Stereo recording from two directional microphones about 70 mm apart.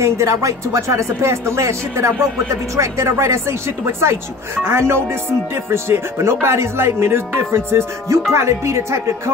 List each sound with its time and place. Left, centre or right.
0.0 s speech: right